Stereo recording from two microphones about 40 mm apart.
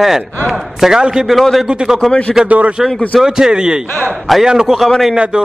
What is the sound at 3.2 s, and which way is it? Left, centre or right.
A man's voice, centre.